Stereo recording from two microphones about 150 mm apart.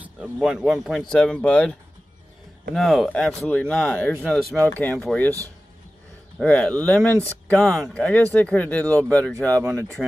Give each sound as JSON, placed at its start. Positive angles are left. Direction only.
{"t": 0.0, "sound": "speech", "side_deg": -5}
{"t": 4.6, "sound": "speech", "side_deg": 10}
{"t": 6.4, "sound": "speech", "side_deg": 10}